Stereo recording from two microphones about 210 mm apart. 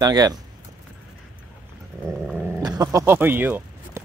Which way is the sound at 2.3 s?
10° right (ahead or behind).